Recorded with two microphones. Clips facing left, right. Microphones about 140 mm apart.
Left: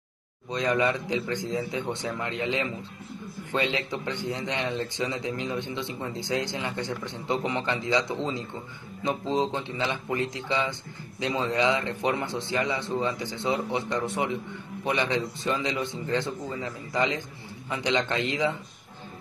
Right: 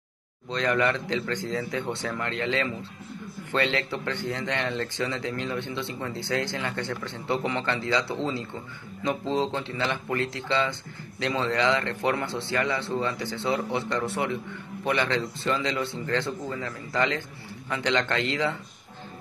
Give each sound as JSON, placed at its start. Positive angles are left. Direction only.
{"t": 0.5, "sound": "a man's voice", "side_deg": 15}
{"t": 9.3, "sound": "a man's voice", "side_deg": 15}